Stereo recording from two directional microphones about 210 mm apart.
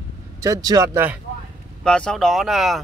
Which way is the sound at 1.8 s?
5° left (ahead or behind).